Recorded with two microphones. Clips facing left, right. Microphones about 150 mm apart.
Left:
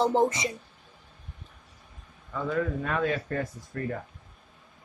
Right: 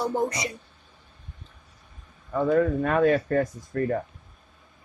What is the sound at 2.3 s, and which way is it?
Speech, 45° right (ahead or behind).